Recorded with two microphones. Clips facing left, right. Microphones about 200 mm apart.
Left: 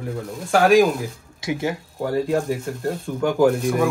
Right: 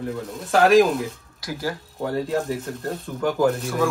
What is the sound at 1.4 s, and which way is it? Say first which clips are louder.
Speech: left 4 dB; 25° left (ahead or behind).